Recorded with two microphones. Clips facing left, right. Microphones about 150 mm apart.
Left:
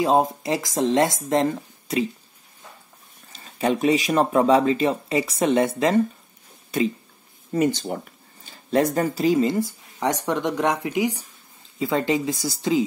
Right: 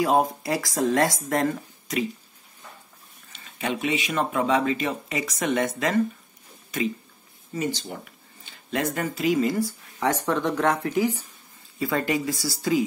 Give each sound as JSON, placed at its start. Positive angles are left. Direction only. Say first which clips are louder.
{"t": 0.0, "sound": "speech", "louder": "left 2 dB", "side_deg": 25}
{"t": 3.3, "sound": "speech", "louder": "left 6 dB", "side_deg": 35}
{"t": 7.5, "sound": "speech", "louder": "left 7 dB", "side_deg": 55}
{"t": 7.8, "sound": "speech", "louder": "left 7 dB", "side_deg": 40}